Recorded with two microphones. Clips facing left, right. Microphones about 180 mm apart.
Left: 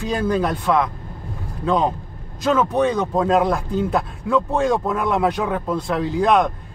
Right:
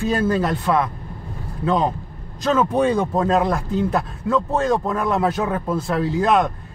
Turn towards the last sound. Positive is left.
turn(degrees=0)  # may be behind; listen again after turning